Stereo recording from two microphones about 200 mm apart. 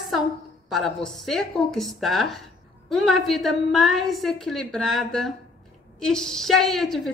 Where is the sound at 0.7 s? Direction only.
Centre (ahead or behind).